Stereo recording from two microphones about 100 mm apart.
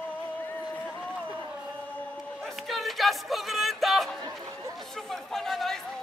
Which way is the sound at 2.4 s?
Centre (ahead or behind).